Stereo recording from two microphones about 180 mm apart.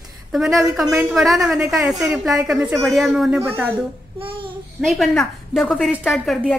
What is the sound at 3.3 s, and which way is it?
Speech, 15° right (ahead or behind).